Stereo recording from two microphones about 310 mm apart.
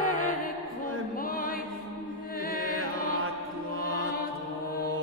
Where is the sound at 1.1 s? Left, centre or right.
Left.